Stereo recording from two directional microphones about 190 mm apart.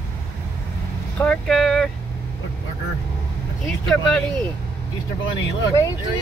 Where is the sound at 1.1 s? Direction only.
5° left (ahead or behind).